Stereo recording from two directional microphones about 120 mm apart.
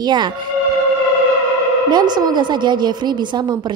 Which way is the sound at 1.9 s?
35° right (ahead or behind).